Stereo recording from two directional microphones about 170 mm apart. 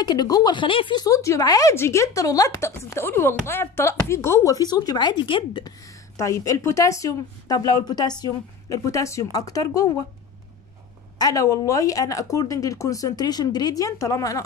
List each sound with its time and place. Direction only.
0.0 s speech: 25° left (ahead or behind)
11.1 s speech: 20° left (ahead or behind)